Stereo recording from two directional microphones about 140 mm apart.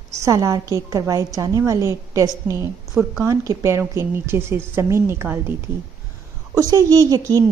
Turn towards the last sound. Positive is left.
turn(degrees=-25)  # may be behind; listen again after turning